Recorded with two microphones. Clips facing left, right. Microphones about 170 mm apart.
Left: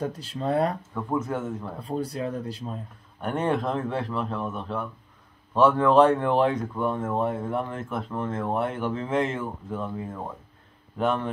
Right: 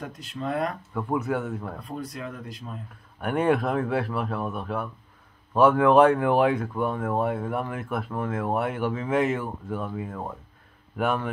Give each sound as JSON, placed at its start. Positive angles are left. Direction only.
{"t": 0.0, "sound": "speech", "side_deg": 30}
{"t": 0.9, "sound": "speech", "side_deg": -10}
{"t": 1.9, "sound": "speech", "side_deg": 30}
{"t": 3.2, "sound": "speech", "side_deg": -10}